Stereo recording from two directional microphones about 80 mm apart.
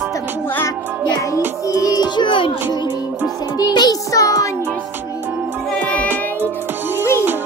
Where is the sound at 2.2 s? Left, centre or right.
Left.